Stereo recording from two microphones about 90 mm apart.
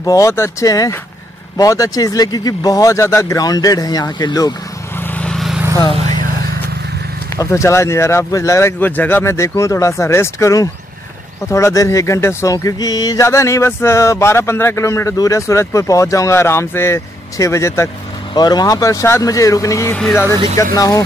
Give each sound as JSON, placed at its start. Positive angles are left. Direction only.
{"t": 0.0, "sound": "speech", "side_deg": 40}
{"t": 5.0, "sound": "vehicle", "side_deg": 20}
{"t": 5.3, "sound": "vehicle", "side_deg": 0}
{"t": 7.3, "sound": "speech", "side_deg": 35}
{"t": 8.7, "sound": "speech", "side_deg": 20}
{"t": 13.2, "sound": "speech", "side_deg": 30}
{"t": 18.3, "sound": "speech", "side_deg": 50}